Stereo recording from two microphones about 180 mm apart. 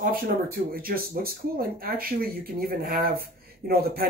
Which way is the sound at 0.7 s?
55° right (ahead or behind).